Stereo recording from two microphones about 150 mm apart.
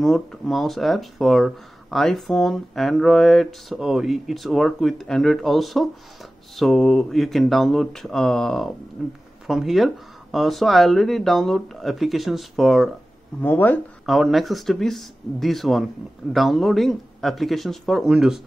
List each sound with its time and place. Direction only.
0.0 s speech: centre (ahead or behind)
13.4 s speech: 10° left (ahead or behind)
14.0 s speech: centre (ahead or behind)